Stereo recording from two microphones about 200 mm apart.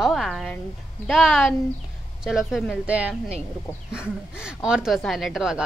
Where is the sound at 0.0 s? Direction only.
Centre (ahead or behind).